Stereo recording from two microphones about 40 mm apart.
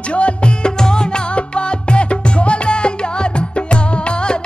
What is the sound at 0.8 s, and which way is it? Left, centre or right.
Music, centre.